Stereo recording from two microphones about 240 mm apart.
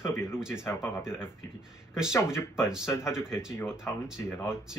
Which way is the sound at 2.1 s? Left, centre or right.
Centre.